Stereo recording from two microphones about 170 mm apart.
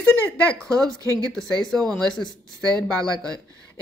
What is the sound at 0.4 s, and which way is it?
Speech, 5° left (ahead or behind).